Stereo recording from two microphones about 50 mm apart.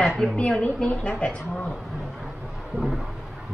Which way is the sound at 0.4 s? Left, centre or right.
Left.